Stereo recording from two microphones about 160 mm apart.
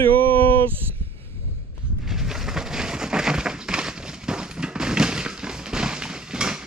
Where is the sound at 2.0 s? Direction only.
Centre (ahead or behind).